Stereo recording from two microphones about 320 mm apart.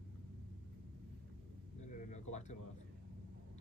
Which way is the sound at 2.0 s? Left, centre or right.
Left.